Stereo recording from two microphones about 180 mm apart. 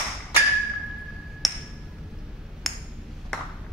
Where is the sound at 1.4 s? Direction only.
Centre (ahead or behind).